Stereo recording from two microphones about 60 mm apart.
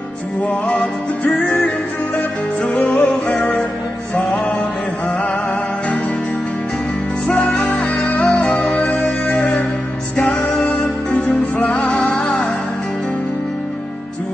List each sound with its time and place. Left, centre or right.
0.5 s music: left
7.2 s music: left